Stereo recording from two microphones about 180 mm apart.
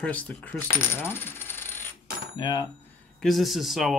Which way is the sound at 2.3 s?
25° left (ahead or behind).